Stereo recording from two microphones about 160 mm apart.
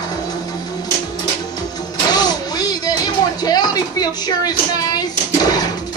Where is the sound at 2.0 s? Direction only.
25° left (ahead or behind).